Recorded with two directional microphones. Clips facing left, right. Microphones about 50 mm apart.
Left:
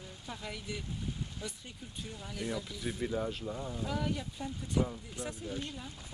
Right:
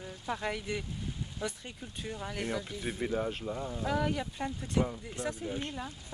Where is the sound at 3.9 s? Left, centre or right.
Right.